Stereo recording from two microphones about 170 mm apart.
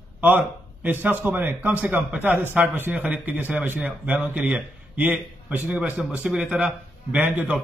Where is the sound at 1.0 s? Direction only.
10° right (ahead or behind).